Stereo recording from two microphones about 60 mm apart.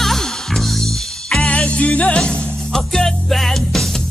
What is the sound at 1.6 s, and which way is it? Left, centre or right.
Music, centre.